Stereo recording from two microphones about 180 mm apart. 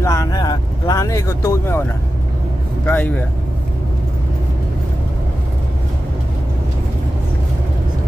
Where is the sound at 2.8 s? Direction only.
10° left (ahead or behind).